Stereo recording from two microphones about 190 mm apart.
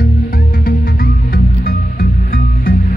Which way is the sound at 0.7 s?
50° left (ahead or behind).